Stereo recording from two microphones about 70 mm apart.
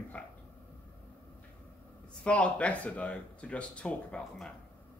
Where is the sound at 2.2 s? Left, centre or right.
Centre.